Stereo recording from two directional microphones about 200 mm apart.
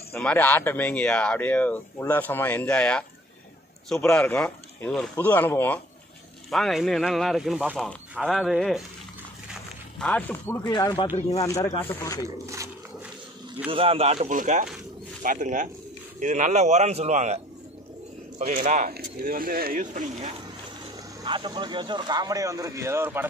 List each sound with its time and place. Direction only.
0.1 s speech: 10° left (ahead or behind)
9.5 s a sound: 5° left (ahead or behind)
10.6 s speech: 20° left (ahead or behind)
11.1 s speech: 30° left (ahead or behind)
11.4 s speech: 15° left (ahead or behind)
13.7 s speech: 30° right (ahead or behind)
18.4 s speech: 45° right (ahead or behind)
21.2 s speech: 20° right (ahead or behind)